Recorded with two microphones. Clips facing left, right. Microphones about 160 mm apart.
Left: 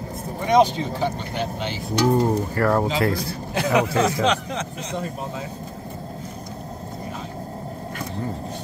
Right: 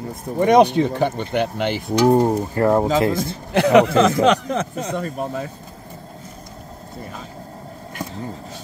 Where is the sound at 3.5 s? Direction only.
75° right (ahead or behind).